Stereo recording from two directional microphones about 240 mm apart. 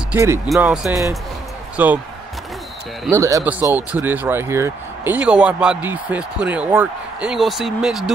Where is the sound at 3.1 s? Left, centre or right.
Centre.